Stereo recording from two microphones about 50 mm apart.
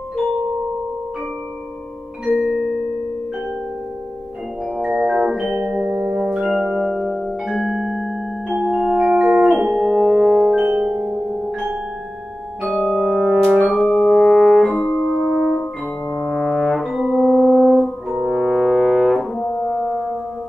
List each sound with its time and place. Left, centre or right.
2.3 s music: centre
4.7 s organ: centre
5.9 s music: centre
6.2 s music: centre
10.6 s music: centre
11.1 s music: centre
13.6 s music: centre
14.8 s music: centre
15.0 s music: centre
16.2 s brass instrument: centre
17.6 s music: centre
18.1 s brass instrument: centre
19.1 s brass instrument: centre
19.7 s brass instrument: centre